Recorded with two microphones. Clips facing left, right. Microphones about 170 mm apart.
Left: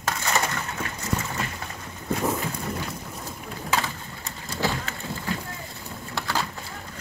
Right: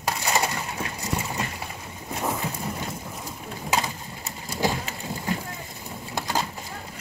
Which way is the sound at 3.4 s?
15° right (ahead or behind).